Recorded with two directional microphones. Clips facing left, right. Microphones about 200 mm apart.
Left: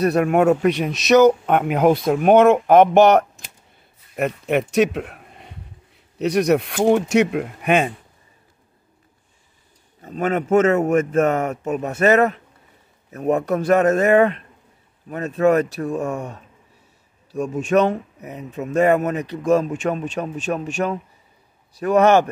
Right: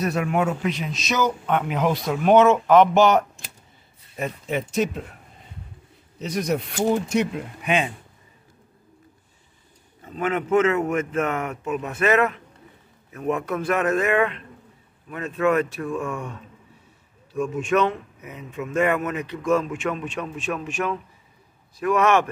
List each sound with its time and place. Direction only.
0.1 s speech: 60° left (ahead or behind)
1.4 s speech: 50° left (ahead or behind)
10.0 s speech: 40° left (ahead or behind)